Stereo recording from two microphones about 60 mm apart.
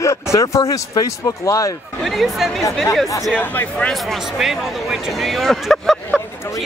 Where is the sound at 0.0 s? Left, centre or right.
Left.